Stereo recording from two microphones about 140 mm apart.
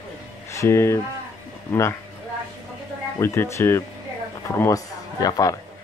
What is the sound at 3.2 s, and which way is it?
A man's voice, 20° left (ahead or behind).